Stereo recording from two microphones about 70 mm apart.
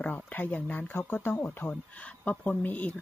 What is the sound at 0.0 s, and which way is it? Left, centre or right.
Speech, left.